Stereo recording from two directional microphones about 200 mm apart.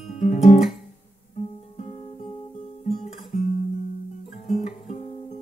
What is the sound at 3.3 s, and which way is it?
Guitar, 35° left (ahead or behind).